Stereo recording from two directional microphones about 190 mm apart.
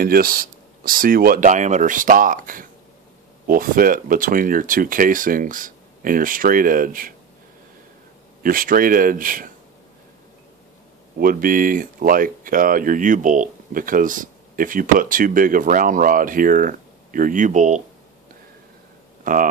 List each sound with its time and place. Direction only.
0.0 s speech: 50° right (ahead or behind)
8.4 s speech: 45° right (ahead or behind)
11.1 s speech: 50° right (ahead or behind)
19.2 s speech: 45° right (ahead or behind)